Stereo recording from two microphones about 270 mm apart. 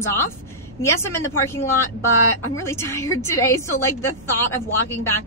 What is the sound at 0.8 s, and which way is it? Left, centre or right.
A woman's voice, centre.